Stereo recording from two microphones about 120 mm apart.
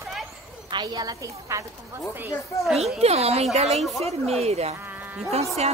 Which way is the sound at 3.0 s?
60° right (ahead or behind).